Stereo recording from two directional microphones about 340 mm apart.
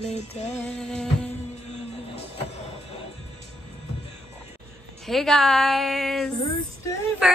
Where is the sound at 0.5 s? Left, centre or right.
Centre.